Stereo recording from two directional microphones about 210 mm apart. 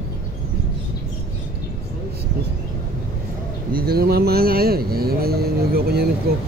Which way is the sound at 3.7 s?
45° right (ahead or behind).